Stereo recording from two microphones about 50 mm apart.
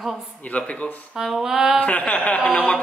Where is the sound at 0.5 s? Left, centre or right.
Left.